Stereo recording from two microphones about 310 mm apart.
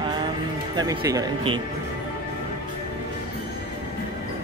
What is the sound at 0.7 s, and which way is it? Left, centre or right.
Speech, centre.